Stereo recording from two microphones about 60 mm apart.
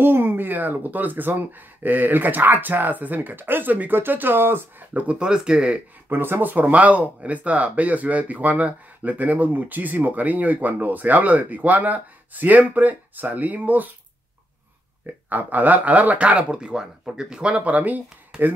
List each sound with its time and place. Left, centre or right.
0.0 s speech: right
4.9 s speech: centre
6.0 s speech: right
15.2 s speech: right